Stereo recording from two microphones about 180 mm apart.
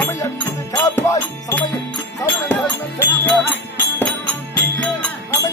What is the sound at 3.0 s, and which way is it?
Music, 10° left (ahead or behind).